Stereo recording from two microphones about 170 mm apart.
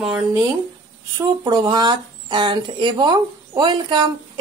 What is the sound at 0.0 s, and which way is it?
Speech, 5° right (ahead or behind).